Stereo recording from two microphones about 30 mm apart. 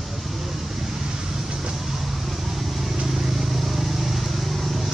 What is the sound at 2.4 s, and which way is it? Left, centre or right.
Vehicle, centre.